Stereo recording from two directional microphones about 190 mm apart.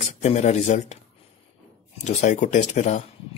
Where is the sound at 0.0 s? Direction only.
35° left (ahead or behind).